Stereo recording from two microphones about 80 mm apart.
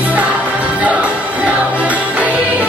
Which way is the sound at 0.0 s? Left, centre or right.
Centre.